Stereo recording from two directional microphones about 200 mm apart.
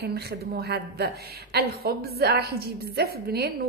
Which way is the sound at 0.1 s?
55° right (ahead or behind).